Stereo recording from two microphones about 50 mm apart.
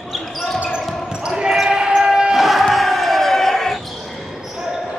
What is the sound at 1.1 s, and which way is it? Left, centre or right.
Basketball bounce, centre.